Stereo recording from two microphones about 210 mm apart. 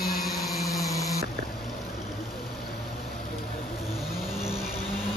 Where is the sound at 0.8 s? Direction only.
15° left (ahead or behind).